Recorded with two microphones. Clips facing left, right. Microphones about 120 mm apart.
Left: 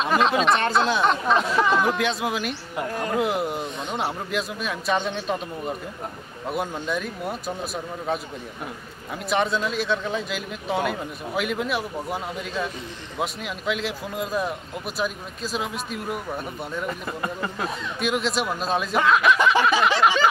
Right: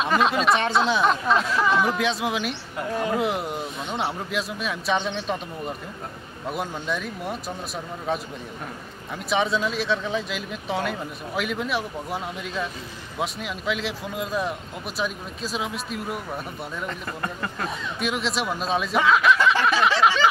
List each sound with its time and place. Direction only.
0.0 s speech: centre (ahead or behind)
9.3 s speech: centre (ahead or behind)
19.3 s a sound: 15° left (ahead or behind)
19.8 s speech: centre (ahead or behind)